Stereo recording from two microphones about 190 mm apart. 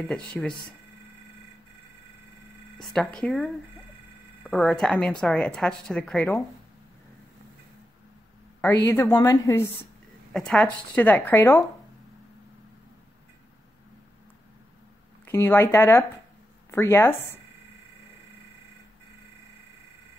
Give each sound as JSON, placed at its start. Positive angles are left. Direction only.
{"t": 0.0, "sound": "a woman's voice", "side_deg": 0}
{"t": 2.8, "sound": "a woman's voice", "side_deg": 0}
{"t": 8.5, "sound": "speech", "side_deg": 15}
{"t": 10.3, "sound": "speech", "side_deg": 5}
{"t": 15.2, "sound": "speech", "side_deg": 15}